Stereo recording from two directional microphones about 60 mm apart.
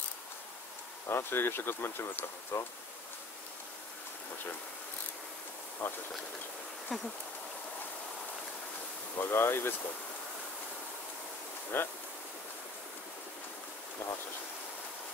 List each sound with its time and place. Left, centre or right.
1.0 s speech: left
5.8 s bee: left
6.9 s a sound: centre
9.2 s speech: left
11.7 s speech: left